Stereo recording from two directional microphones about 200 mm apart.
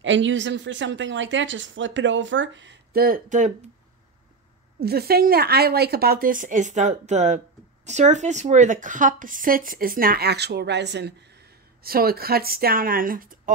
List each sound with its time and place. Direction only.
0.0 s speech: 70° right (ahead or behind); by 3.5 s 40° right (ahead or behind)
4.7 s speech: 50° right (ahead or behind)